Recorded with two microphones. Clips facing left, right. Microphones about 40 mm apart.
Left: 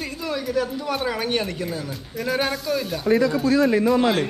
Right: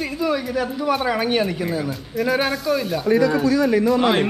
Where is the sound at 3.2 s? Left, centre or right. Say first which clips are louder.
Right 3 dB; right.